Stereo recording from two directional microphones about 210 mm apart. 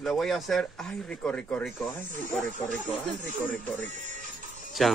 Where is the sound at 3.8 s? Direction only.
35° right (ahead or behind).